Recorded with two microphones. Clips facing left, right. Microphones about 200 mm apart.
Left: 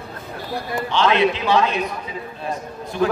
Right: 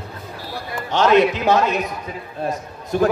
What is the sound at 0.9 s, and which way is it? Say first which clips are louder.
A man's voice: right 3 dB; 45° right (ahead or behind).